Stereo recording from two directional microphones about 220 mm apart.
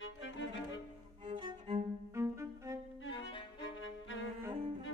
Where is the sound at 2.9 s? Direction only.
60° left (ahead or behind).